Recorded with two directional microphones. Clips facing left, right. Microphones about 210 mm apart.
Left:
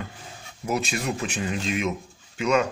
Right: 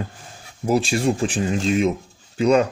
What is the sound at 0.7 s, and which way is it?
Speech, 30° right (ahead or behind).